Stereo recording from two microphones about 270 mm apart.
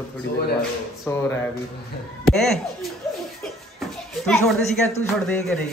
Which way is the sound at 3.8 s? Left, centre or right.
Centre.